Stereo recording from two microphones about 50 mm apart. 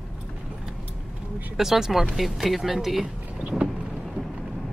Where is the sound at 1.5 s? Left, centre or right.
Centre.